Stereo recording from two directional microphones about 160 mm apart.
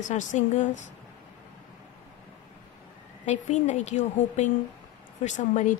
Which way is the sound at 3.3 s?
45° left (ahead or behind).